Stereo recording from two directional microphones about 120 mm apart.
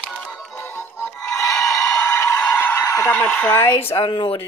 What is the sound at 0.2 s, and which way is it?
Music, 5° left (ahead or behind).